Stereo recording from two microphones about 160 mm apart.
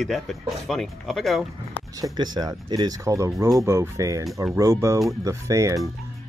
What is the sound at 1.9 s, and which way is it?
Speech, 25° right (ahead or behind).